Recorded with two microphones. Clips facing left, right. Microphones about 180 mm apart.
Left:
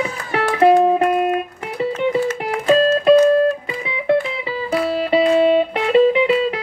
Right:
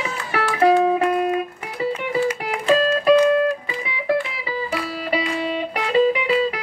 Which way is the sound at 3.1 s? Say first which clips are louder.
Left 4 dB; 35° left (ahead or behind).